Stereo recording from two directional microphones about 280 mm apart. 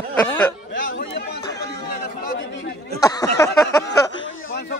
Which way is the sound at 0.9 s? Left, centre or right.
Left.